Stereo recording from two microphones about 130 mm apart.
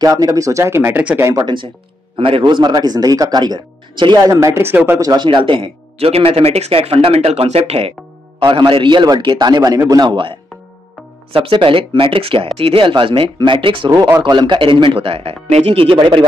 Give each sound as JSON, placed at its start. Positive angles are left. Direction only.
{"t": 0.0, "sound": "speech", "side_deg": -30}
{"t": 1.4, "sound": "speech", "side_deg": -40}
{"t": 8.4, "sound": "speech", "side_deg": -40}
{"t": 11.3, "sound": "speech", "side_deg": -45}
{"t": 13.8, "sound": "speech", "side_deg": -25}